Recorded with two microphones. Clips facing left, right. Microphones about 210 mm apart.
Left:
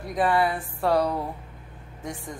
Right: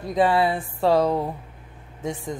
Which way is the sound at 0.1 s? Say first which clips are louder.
Right 3 dB; 25° right (ahead or behind).